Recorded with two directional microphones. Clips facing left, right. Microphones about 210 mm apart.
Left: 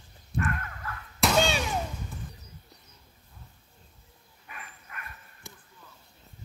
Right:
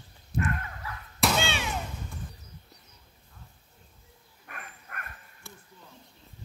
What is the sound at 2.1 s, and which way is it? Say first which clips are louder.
Basketball bounce: even; 5° left (ahead or behind).